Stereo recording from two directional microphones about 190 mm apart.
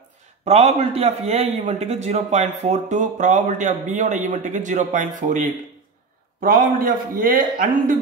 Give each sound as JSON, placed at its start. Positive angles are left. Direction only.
{"t": 0.5, "sound": "a man's voice", "side_deg": -35}